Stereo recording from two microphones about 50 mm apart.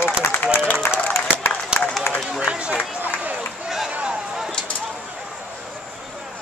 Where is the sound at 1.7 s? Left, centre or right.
Centre.